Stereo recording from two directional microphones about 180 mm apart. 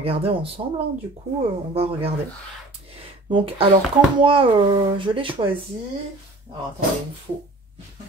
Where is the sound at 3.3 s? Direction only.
30° right (ahead or behind).